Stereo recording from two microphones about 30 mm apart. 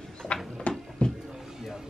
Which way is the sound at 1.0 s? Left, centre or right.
Left.